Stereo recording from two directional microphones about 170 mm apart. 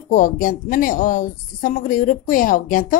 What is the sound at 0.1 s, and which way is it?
Speech, 50° left (ahead or behind).